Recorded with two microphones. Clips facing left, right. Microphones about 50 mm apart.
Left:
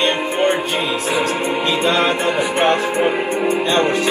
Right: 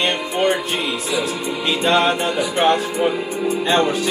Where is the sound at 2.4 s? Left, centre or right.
Left.